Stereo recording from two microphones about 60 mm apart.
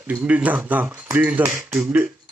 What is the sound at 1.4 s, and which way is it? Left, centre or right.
Speech, right.